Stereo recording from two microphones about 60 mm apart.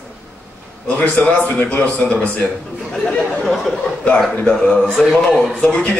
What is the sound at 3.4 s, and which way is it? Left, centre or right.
Speech, centre.